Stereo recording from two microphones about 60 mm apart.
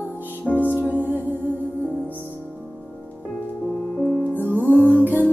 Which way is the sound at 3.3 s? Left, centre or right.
Centre.